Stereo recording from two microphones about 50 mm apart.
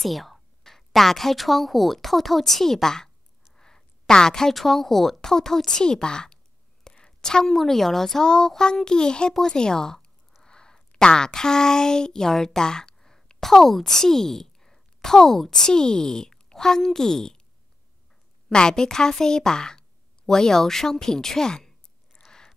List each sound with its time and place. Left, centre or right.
0.0 s a woman's voice: centre
3.5 s a sound: centre
4.1 s a woman's voice: centre
18.5 s a woman's voice: centre